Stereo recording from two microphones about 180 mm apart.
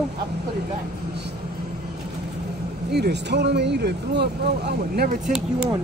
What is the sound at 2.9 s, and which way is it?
Speech, 70° right (ahead or behind).